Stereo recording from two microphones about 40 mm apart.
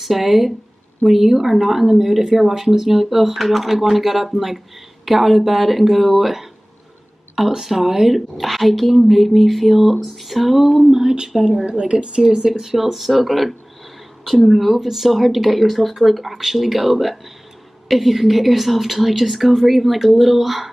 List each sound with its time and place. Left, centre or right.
0.0 s speech: centre
11.6 s a woman's voice: right; by 20.7 s centre